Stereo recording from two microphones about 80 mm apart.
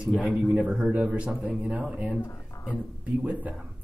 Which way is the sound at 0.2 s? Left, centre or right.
Centre.